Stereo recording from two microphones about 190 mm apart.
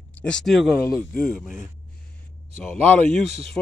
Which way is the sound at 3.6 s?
5° left (ahead or behind).